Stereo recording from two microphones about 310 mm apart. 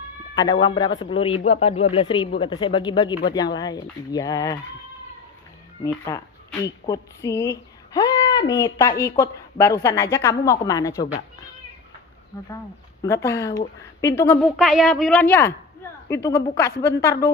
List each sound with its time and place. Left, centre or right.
0.4 s a woman's voice: centre
5.9 s a woman's voice: centre
12.3 s a woman's voice: centre